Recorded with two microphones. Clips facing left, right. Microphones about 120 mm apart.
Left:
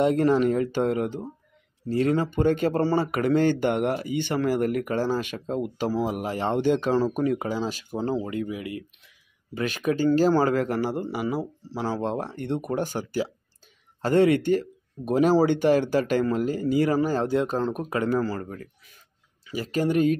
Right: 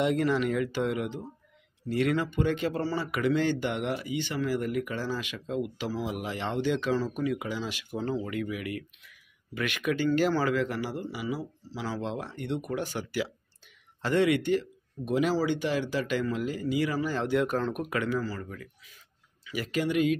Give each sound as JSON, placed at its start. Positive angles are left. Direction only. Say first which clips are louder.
{"t": 0.0, "sound": "speech", "louder": "left 6 dB", "side_deg": 40}
{"t": 18.2, "sound": "speech", "louder": "left 6 dB", "side_deg": 50}
{"t": 19.4, "sound": "speech", "louder": "left 4 dB", "side_deg": 35}